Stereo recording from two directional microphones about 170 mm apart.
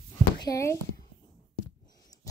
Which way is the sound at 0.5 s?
15° left (ahead or behind).